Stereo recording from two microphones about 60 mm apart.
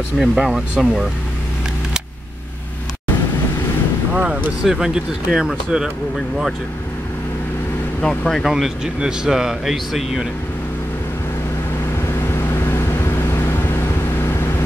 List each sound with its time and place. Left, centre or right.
0.2 s speech: centre
4.1 s speech: right
4.6 s speech: centre
8.0 s speech: centre
8.5 s speech: centre
12.2 s vehicle: left